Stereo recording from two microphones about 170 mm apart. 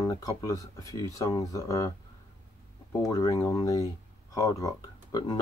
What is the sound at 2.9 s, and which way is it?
Speech, 20° left (ahead or behind).